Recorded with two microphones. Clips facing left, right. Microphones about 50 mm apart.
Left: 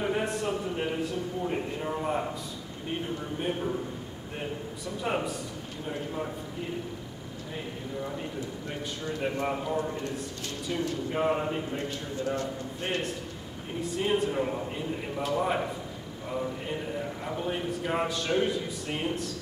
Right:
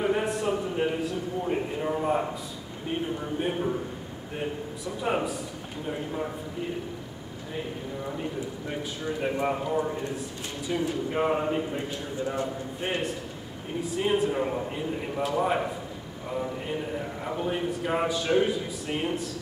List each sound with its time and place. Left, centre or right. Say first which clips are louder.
0.0 s a sound: right 3 dB; centre
2.9 s a man's voice: right 3 dB; centre
5.0 s a man's voice: right 3 dB; centre
7.5 s a man's voice: right 2 dB; centre